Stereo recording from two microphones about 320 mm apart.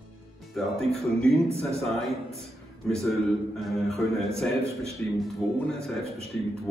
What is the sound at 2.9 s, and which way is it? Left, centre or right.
A man's voice, centre.